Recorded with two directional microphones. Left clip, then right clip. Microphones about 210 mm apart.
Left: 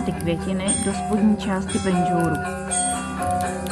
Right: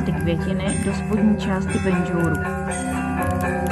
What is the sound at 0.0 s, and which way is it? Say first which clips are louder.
Speech: right 1 dB; centre (ahead or behind).